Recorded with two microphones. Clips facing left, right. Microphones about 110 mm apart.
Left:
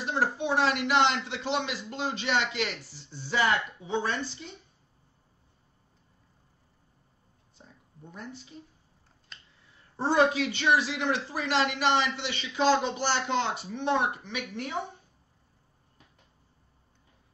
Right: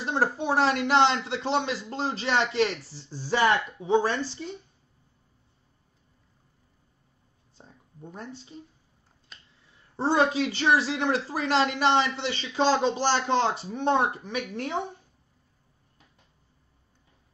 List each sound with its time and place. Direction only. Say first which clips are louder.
0.0 s a man's voice: right 2 dB; 35° right (ahead or behind)
7.5 s a sound: right 3 dB; 35° right (ahead or behind)
9.3 s finger snapping: even; 5° right (ahead or behind)
9.9 s a man's voice: right 1 dB; 25° right (ahead or behind); by 14.8 s 40° right (ahead or behind)